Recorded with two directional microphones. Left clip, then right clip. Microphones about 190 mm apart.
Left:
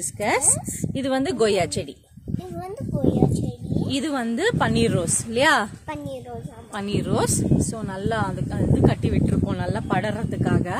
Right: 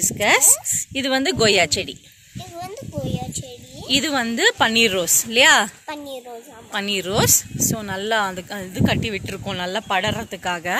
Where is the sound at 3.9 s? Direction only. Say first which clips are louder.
Right 7 dB; 5° left (ahead or behind).